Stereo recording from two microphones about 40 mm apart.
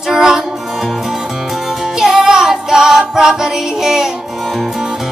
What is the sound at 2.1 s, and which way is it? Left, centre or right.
Music, right.